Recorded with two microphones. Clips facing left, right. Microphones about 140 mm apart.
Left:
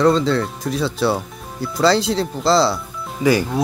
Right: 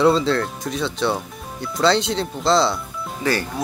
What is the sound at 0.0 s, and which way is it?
Speech, centre (ahead or behind).